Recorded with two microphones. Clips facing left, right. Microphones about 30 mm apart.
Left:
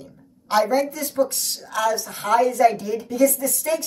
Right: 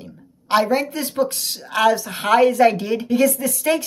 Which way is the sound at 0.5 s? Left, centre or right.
Right.